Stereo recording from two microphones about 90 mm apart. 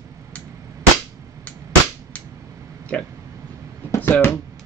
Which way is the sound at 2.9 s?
10° left (ahead or behind).